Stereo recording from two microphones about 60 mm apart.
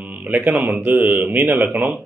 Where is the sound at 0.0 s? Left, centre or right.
Right.